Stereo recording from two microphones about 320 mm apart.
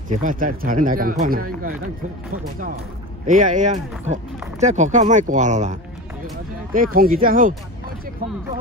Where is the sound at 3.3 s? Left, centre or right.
Right.